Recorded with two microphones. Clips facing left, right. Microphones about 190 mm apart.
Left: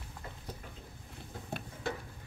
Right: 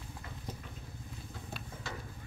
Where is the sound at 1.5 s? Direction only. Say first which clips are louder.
Left 7 dB; 55° left (ahead or behind).